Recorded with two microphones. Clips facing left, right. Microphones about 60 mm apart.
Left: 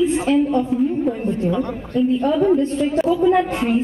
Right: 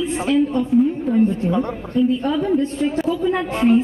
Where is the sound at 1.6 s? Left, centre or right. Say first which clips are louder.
Right 1 dB; right.